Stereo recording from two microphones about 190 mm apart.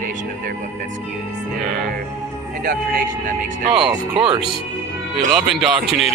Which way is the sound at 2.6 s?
50° right (ahead or behind).